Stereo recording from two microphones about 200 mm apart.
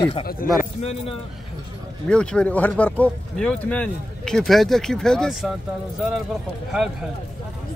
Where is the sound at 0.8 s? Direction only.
30° left (ahead or behind).